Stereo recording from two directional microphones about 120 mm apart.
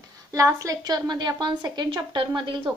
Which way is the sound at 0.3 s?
25° right (ahead or behind).